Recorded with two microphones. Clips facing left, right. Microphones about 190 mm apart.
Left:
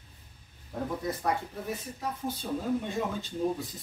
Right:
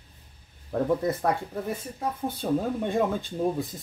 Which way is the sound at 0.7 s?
60° right (ahead or behind).